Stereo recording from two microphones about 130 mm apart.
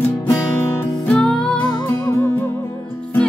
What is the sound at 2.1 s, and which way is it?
Music, 20° left (ahead or behind).